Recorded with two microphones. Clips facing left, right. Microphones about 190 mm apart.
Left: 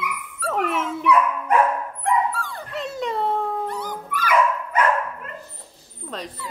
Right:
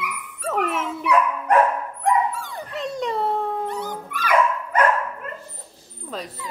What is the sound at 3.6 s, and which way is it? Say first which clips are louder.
Dog: right 1 dB; 25° right (ahead or behind).